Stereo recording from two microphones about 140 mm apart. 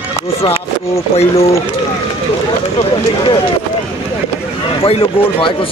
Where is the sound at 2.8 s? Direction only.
40° left (ahead or behind).